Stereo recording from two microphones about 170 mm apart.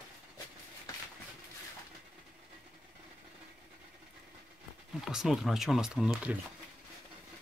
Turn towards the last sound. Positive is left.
turn(degrees=0)  # may be behind; listen again after turning